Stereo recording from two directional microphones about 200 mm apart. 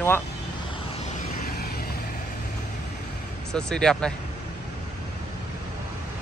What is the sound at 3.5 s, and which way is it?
Speech, 5° left (ahead or behind).